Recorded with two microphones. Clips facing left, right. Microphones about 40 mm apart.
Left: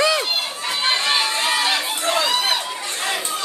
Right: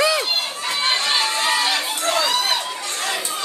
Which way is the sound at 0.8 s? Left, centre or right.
Centre.